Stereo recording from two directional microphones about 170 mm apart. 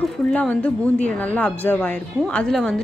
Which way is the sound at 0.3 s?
10° left (ahead or behind).